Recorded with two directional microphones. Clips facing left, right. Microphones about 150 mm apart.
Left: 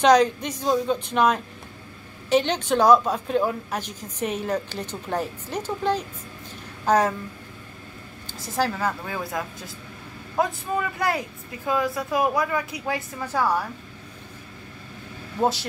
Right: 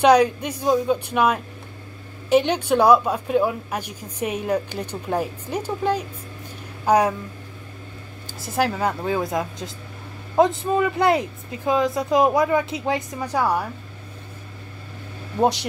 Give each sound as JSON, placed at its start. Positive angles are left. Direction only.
{"t": 0.0, "sound": "a woman's voice", "side_deg": -10}
{"t": 8.4, "sound": "speech", "side_deg": -15}